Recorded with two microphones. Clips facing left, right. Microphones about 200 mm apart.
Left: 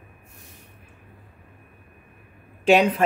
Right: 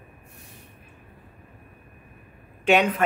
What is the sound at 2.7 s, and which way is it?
Speech, 35° left (ahead or behind).